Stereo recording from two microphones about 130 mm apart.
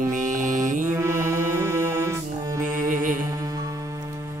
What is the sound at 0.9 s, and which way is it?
Music, 20° right (ahead or behind).